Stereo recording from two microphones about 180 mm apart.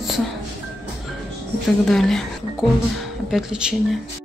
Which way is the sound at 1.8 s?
Centre (ahead or behind).